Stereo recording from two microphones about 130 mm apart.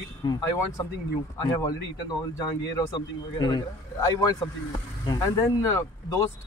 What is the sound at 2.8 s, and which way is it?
A man's voice, 30° left (ahead or behind).